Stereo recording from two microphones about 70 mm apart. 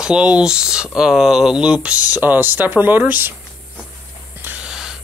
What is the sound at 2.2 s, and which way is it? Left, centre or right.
Speech, right.